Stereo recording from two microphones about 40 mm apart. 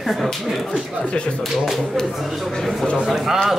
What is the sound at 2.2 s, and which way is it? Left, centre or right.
Speech, centre.